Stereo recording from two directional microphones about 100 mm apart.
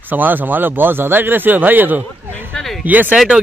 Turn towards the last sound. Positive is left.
turn(degrees=-15)  # may be behind; listen again after turning